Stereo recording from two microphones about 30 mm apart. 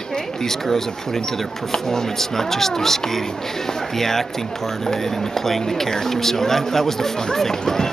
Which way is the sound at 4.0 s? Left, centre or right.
Centre.